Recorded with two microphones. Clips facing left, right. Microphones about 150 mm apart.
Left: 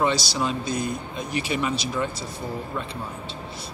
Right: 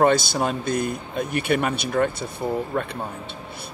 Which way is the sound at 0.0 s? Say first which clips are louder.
Right 5 dB; 55° right (ahead or behind).